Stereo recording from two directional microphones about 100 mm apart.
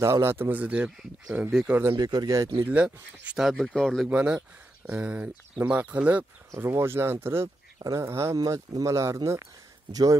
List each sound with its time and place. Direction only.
0.0 s speech: 25° right (ahead or behind); by 1.8 s 5° right (ahead or behind)
2.0 s speech: 40° right (ahead or behind)
2.7 s speech: 10° right (ahead or behind)
4.1 s speech: 10° right (ahead or behind)
6.5 s speech: 25° right (ahead or behind)
7.4 s speech: 35° right (ahead or behind)